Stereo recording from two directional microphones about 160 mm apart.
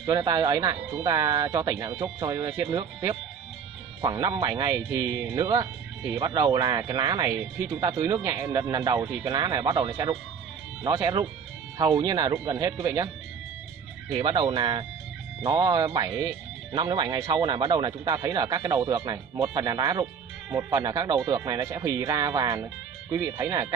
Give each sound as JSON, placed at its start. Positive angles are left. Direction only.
{"t": 0.0, "sound": "speech", "side_deg": -25}
{"t": 7.3, "sound": "speech", "side_deg": -15}
{"t": 14.1, "sound": "speech", "side_deg": -30}